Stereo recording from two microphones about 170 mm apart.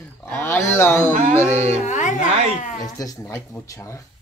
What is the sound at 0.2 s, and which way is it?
Dog, 15° left (ahead or behind).